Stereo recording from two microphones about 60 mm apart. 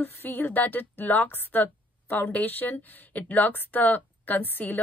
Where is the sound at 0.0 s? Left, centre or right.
Left.